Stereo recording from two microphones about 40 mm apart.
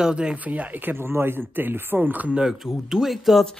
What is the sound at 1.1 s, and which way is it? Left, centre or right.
Speech, right.